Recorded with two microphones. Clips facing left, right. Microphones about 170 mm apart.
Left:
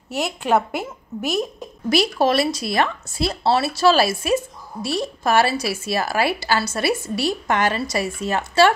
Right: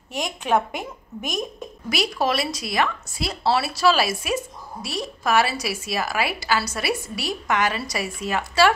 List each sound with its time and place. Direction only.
0.1 s a woman's voice: 10° left (ahead or behind)
1.9 s a woman's voice: 30° left (ahead or behind)